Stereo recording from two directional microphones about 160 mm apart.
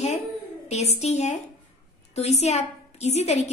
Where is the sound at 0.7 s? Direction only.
45° left (ahead or behind).